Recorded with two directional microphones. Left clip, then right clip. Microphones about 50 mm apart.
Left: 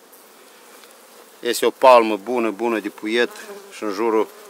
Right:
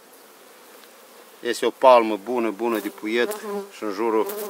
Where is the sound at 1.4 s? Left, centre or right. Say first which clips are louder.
Left 3 dB; left.